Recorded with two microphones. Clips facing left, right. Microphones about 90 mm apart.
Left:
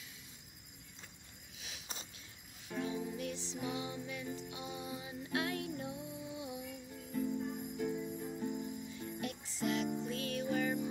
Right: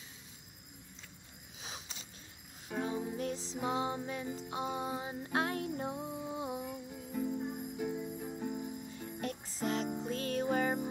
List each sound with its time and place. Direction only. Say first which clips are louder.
2.7 s music: right 3 dB; 40° right (ahead or behind)
6.9 s music: left 1 dB; 10° right (ahead or behind)
8.2 s cricket: even; 20° right (ahead or behind)
8.8 s music: right 2 dB; 40° right (ahead or behind)